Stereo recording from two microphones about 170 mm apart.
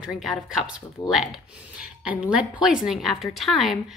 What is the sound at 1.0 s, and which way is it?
Speech, 25° left (ahead or behind).